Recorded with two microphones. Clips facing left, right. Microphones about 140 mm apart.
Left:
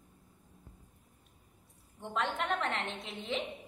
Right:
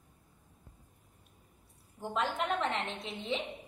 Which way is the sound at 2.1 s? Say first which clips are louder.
Right 1 dB; centre (ahead or behind).